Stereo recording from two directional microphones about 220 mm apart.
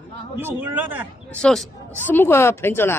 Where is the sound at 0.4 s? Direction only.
10° right (ahead or behind).